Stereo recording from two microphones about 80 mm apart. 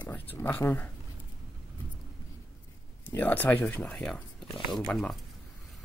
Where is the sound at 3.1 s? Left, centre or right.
Left.